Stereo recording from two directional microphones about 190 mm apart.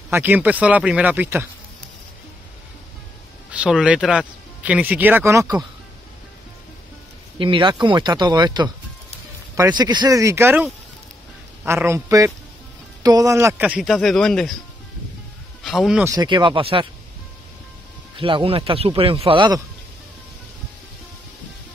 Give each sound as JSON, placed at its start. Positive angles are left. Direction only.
{"t": 0.1, "sound": "speech", "side_deg": -10}
{"t": 3.5, "sound": "speech", "side_deg": -5}
{"t": 7.3, "sound": "a man's voice", "side_deg": -25}
{"t": 15.6, "sound": "speech", "side_deg": 0}
{"t": 16.0, "sound": "speech", "side_deg": -20}
{"t": 18.1, "sound": "speech", "side_deg": -25}